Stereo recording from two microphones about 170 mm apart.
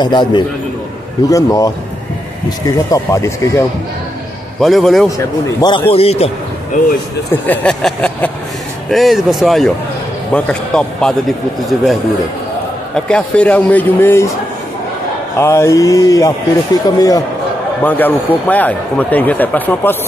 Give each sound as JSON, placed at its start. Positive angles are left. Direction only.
{"t": 0.0, "sound": "a man's voice", "side_deg": 25}
{"t": 4.6, "sound": "a man's voice", "side_deg": 0}
{"t": 5.1, "sound": "a man's voice", "side_deg": 25}
{"t": 7.4, "sound": "a man's voice", "side_deg": 5}
{"t": 12.9, "sound": "speech", "side_deg": 5}
{"t": 15.3, "sound": "a man's voice", "side_deg": 15}
{"t": 17.8, "sound": "speech", "side_deg": 10}